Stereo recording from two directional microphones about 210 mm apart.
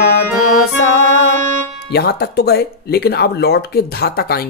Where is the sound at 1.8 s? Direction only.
50° left (ahead or behind).